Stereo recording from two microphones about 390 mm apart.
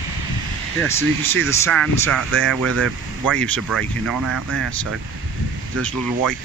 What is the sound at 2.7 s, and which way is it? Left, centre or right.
Speech, right.